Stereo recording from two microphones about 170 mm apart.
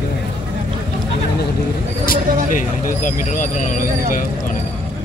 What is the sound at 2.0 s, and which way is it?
Vehicle, 55° left (ahead or behind).